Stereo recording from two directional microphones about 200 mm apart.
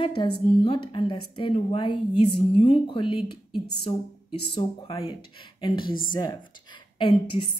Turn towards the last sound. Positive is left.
turn(degrees=25)  # may be behind; listen again after turning